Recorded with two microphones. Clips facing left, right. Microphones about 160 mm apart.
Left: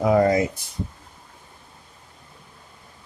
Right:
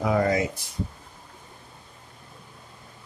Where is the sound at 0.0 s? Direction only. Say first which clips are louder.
Left 5 dB; 30° left (ahead or behind).